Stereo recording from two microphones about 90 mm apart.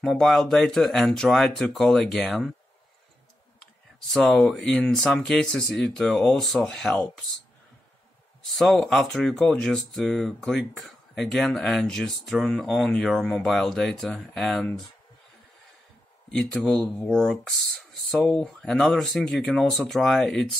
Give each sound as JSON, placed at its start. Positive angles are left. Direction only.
{"t": 0.0, "sound": "speech", "side_deg": 5}
{"t": 4.1, "sound": "speech", "side_deg": 0}
{"t": 8.5, "sound": "speech", "side_deg": 5}
{"t": 16.3, "sound": "speech", "side_deg": 5}